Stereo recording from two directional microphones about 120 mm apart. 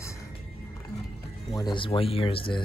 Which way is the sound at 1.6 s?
40° left (ahead or behind).